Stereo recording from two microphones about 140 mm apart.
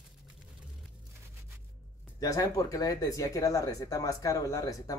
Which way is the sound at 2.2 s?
25° left (ahead or behind).